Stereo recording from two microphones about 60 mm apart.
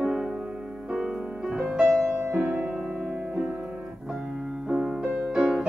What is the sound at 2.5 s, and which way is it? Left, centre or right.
Music, right.